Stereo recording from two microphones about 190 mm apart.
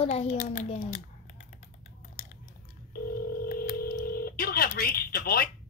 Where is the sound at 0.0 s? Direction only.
35° left (ahead or behind).